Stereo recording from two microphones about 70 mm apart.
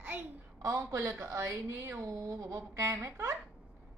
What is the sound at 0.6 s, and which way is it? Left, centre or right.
Speech, right.